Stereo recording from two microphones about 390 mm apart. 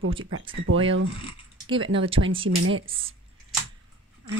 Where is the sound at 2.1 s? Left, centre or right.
Right.